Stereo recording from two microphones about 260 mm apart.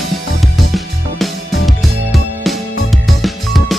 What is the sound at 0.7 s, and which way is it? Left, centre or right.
Music, centre.